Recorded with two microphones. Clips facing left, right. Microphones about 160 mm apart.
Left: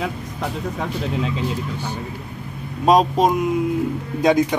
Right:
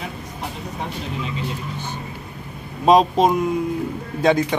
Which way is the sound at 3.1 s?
5° left (ahead or behind).